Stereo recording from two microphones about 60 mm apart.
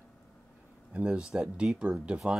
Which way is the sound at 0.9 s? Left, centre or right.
Centre.